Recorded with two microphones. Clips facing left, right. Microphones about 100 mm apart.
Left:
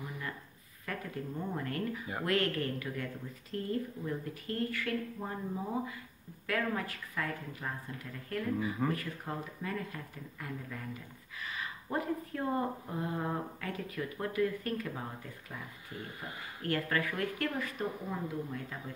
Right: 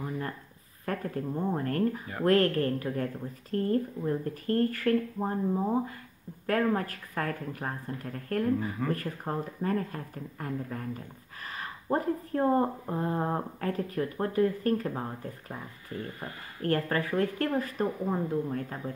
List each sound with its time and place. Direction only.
0.8 s speech: 40° right (ahead or behind)